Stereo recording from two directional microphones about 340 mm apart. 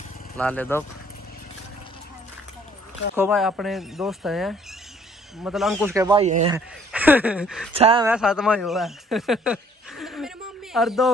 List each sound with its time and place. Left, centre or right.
0.4 s speech: centre
3.2 s speech: centre
6.5 s speech: centre
7.7 s speech: centre
8.1 s speech: centre